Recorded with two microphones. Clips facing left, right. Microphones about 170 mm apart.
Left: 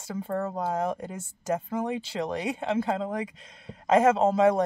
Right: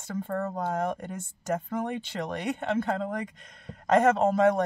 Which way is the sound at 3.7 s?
25° left (ahead or behind).